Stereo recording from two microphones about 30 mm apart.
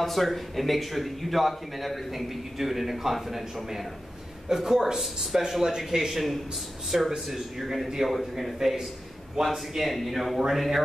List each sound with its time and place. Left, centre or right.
0.0 s speech: centre
4.5 s speech: centre
6.9 s speech: centre
9.4 s speech: centre
9.8 s speech: centre